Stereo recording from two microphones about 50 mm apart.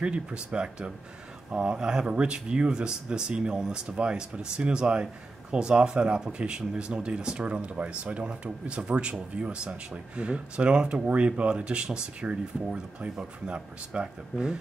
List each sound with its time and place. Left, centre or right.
0.0 s speech: right